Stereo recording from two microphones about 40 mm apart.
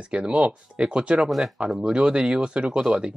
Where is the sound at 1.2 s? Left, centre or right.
Centre.